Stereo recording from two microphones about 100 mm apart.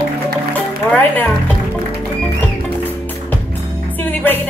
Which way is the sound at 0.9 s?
15° left (ahead or behind).